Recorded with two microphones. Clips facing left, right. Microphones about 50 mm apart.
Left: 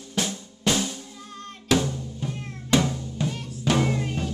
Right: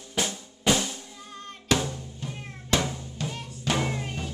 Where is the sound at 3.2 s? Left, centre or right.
Centre.